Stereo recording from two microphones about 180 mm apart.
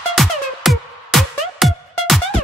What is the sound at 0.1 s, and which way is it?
Music, centre (ahead or behind).